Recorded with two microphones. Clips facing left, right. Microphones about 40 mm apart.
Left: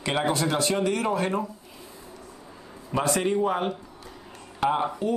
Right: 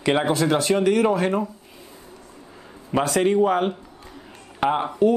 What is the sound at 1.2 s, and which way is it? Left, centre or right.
Speech, centre.